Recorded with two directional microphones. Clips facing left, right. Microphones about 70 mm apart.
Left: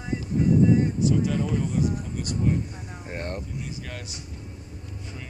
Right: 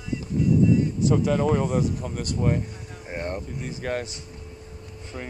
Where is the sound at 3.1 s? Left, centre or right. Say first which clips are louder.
Right 3 dB; centre.